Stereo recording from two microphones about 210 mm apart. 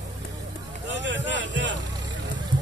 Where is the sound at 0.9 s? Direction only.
60° right (ahead or behind).